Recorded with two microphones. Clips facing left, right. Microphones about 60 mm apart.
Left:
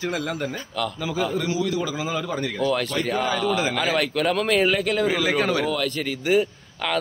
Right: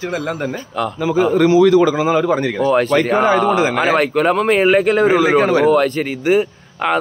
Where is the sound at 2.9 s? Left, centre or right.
Right.